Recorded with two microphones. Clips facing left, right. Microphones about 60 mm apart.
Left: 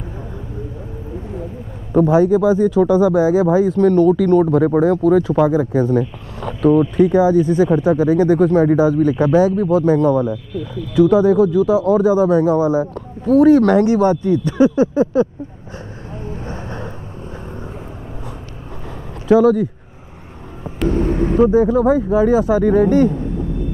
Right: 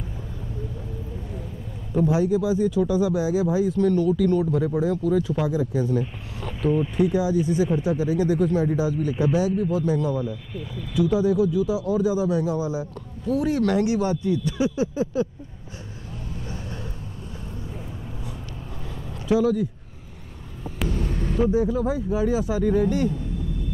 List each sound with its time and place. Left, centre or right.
2.0 s speech: left
16.3 s vehicle: left
19.2 s speech: left
20.9 s speech: left